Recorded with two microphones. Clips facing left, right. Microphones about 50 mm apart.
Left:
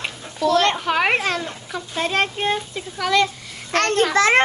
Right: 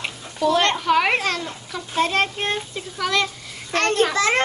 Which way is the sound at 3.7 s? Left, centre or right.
Left.